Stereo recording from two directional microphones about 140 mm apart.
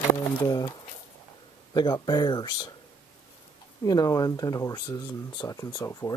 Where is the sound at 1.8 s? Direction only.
30° left (ahead or behind).